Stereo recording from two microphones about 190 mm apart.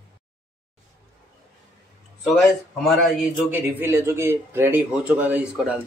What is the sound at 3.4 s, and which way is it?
Speech, 10° right (ahead or behind).